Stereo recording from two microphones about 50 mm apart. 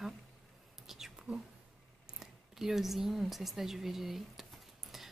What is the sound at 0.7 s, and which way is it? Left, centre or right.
Whispering, centre.